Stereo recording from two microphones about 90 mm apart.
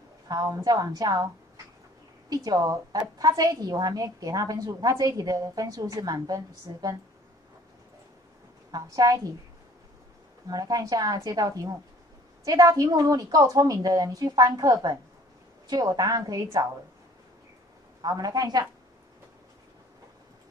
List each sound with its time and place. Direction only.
0.3 s a woman's voice: 40° right (ahead or behind)
2.2 s a woman's voice: 45° right (ahead or behind)
8.7 s a woman's voice: 40° right (ahead or behind)
10.5 s a woman's voice: 45° right (ahead or behind)
18.0 s a woman's voice: 45° right (ahead or behind)